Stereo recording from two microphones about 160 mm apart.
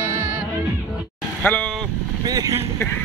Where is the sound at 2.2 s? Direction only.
20° right (ahead or behind).